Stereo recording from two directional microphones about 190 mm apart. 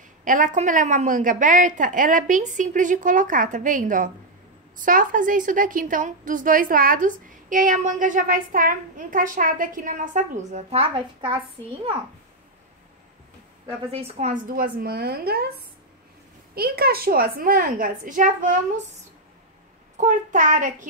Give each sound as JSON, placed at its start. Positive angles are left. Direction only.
{"t": 0.2, "sound": "a woman's voice", "side_deg": -45}
{"t": 13.9, "sound": "a woman's voice", "side_deg": -35}
{"t": 16.5, "sound": "a woman's voice", "side_deg": -55}
{"t": 20.0, "sound": "a child's voice", "side_deg": -40}